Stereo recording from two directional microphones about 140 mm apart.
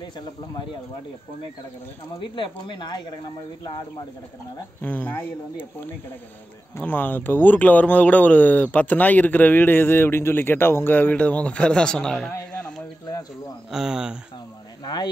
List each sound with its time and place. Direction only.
2.3 s speech: 35° left (ahead or behind)
4.8 s speech: 10° left (ahead or behind)
6.8 s speech: 15° left (ahead or behind)
13.7 s speech: 5° right (ahead or behind)